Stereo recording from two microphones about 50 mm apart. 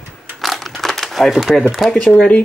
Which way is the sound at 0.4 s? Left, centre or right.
Centre.